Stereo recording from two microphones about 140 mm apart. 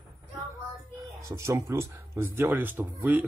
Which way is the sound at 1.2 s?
20° right (ahead or behind).